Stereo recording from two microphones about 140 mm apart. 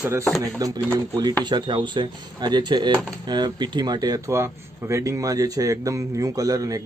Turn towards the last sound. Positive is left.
turn(degrees=-25)  # may be behind; listen again after turning